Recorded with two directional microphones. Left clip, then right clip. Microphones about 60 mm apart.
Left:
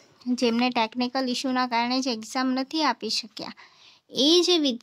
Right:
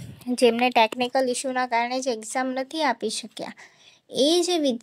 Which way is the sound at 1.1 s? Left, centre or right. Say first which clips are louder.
Right 3 dB; right.